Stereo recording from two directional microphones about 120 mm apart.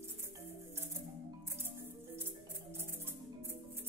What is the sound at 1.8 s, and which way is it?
Music, 20° right (ahead or behind).